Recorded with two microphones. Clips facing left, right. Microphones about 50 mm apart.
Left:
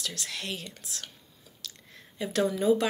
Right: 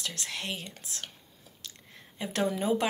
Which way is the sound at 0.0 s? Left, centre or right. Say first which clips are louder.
Even; right.